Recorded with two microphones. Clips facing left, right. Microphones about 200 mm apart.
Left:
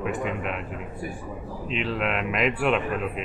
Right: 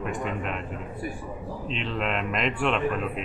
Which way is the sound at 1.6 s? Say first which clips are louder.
Left 3 dB; 5° left (ahead or behind).